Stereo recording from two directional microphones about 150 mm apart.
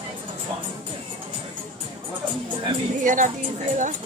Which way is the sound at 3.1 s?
60° right (ahead or behind).